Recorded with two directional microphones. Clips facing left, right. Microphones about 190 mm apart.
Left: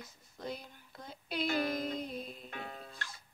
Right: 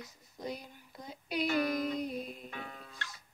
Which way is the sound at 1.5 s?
25° left (ahead or behind).